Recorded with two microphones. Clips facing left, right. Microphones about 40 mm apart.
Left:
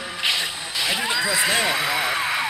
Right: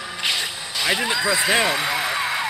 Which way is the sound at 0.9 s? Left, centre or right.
Centre.